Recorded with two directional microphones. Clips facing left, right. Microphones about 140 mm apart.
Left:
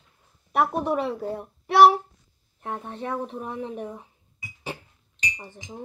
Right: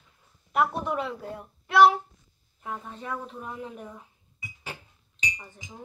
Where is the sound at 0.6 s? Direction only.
35° left (ahead or behind).